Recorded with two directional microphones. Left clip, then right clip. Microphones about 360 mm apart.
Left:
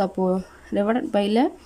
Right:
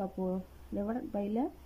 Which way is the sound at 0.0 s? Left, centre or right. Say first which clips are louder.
Left 14 dB; left.